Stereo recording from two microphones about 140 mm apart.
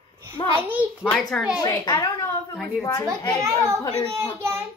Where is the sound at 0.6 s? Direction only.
15° right (ahead or behind).